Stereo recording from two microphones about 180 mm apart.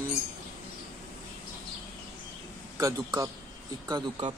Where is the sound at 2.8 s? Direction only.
20° right (ahead or behind).